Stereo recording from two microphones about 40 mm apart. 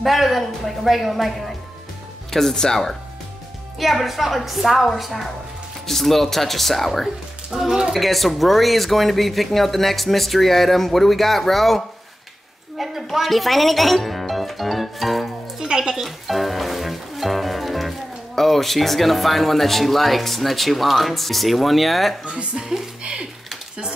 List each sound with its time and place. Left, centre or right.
0.0 s speech: centre
2.3 s speech: centre
3.8 s speech: centre
7.5 s speech: centre
7.9 s speech: centre
15.6 s speech: centre
16.0 s speech: centre
22.2 s speech: right
22.6 s speech: centre